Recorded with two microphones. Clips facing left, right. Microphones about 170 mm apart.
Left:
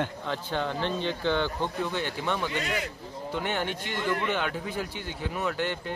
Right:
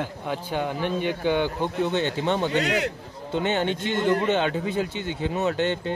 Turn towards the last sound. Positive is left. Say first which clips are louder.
# right 6 dB
turn(degrees=-25)  # may be behind; listen again after turning